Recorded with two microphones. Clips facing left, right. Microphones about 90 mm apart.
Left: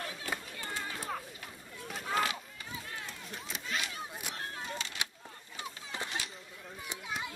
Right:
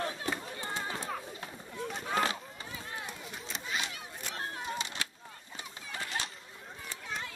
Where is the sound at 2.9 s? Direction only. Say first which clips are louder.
Right 2 dB; 20° right (ahead or behind).